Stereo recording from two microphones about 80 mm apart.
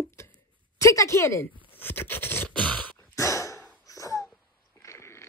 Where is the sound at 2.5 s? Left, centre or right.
Centre.